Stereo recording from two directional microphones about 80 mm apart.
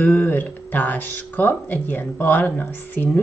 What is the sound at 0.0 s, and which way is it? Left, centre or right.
Speech, left.